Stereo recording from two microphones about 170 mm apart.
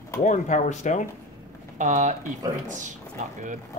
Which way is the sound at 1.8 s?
45° right (ahead or behind).